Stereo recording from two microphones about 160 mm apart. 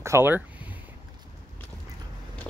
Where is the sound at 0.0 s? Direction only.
15° right (ahead or behind).